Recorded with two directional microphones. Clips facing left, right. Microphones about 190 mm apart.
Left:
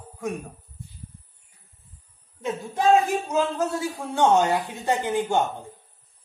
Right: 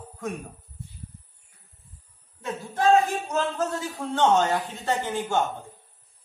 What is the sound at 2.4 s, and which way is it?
A man's voice, 15° left (ahead or behind).